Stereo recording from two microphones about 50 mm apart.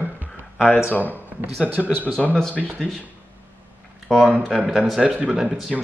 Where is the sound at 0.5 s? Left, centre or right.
Left.